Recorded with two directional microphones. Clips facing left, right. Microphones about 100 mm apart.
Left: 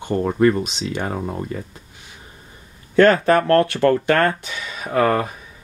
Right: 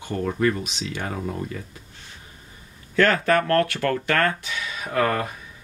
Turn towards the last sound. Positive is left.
turn(degrees=20)  # may be behind; listen again after turning